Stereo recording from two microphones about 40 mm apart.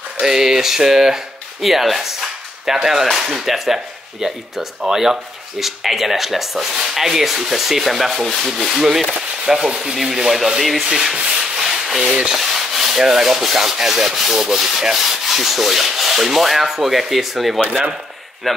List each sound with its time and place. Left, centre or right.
0.2 s rub: centre
5.6 s speech: centre
9.7 s rub: centre
10.0 s sanding: centre
10.8 s rub: centre